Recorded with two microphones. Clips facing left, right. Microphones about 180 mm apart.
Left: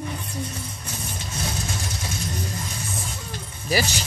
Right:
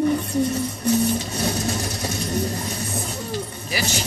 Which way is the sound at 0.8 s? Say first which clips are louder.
Right 15 dB; 40° right (ahead or behind).